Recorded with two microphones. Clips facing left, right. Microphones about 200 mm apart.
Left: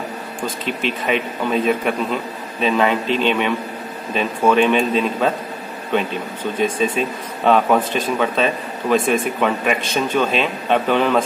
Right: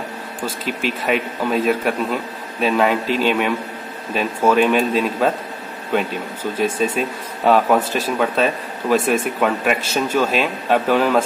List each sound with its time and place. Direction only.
0.4 s speech: 5° right (ahead or behind)
6.6 s speech: 5° right (ahead or behind)